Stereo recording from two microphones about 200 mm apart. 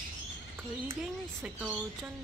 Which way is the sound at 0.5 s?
10° right (ahead or behind).